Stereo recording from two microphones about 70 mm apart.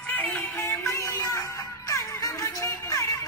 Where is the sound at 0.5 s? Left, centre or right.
Left.